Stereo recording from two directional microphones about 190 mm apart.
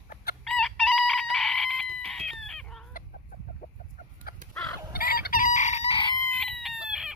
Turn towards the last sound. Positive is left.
turn(degrees=0)  # may be behind; listen again after turning